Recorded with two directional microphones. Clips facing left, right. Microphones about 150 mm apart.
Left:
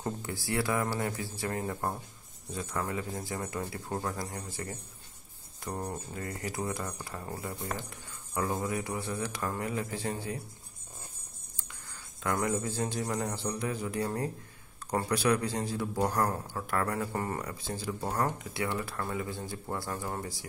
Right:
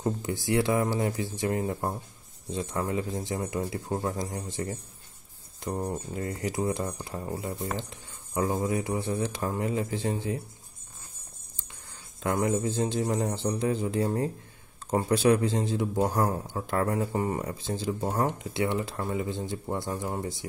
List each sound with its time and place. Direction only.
0.0 s speech: 20° right (ahead or behind)
5.9 s speech: 25° right (ahead or behind)
11.5 s speech: 20° right (ahead or behind)